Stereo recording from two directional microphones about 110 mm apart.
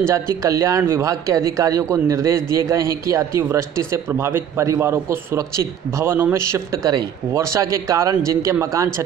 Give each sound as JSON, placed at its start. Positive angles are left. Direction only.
{"t": 0.4, "sound": "a man's voice", "side_deg": -30}